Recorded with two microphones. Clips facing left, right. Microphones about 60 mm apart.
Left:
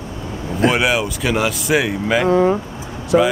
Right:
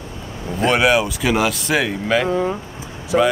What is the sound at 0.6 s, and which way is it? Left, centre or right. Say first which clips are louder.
Speech: right 1 dB; centre.